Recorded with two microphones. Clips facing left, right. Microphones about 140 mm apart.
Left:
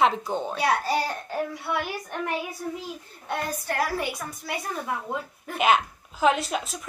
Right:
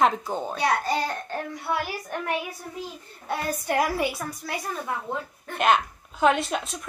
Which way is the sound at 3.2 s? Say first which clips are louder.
Right 2 dB; 15° right (ahead or behind).